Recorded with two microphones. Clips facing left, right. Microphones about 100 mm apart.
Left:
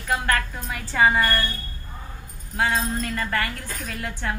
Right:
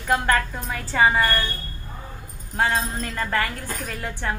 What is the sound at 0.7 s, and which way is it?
Speech, centre (ahead or behind).